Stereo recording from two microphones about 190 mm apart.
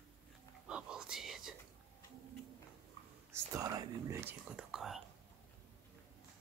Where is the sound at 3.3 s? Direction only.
15° right (ahead or behind); by 5.0 s centre (ahead or behind).